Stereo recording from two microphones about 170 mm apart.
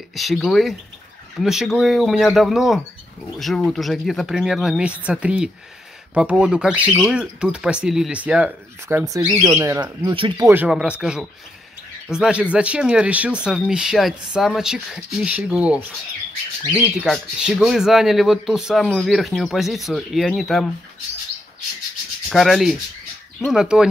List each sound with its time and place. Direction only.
0.1 s speech: centre (ahead or behind); by 10.4 s 30° right (ahead or behind)
10.4 s speech: 10° right (ahead or behind)
22.3 s speech: centre (ahead or behind)